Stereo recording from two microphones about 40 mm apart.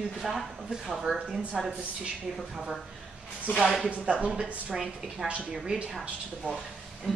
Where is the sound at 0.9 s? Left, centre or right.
Centre.